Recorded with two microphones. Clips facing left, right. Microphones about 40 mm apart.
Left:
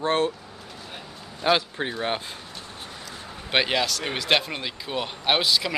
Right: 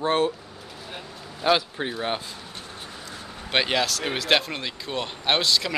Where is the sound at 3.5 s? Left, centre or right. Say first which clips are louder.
Even; centre.